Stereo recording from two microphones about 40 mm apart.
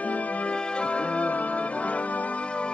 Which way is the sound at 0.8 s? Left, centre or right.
Left.